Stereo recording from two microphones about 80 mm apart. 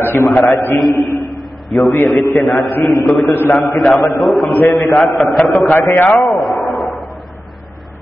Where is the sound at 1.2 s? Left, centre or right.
Centre.